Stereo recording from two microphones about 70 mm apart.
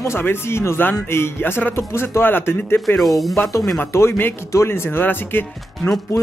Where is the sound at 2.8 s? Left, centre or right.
Centre.